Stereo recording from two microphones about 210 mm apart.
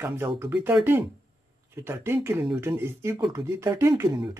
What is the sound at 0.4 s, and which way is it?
Speech, 10° right (ahead or behind).